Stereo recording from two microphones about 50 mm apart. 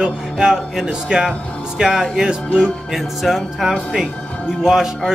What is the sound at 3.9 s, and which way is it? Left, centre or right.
Speech, centre.